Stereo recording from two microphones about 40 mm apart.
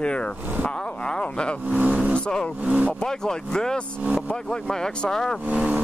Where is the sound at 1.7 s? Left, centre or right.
Right.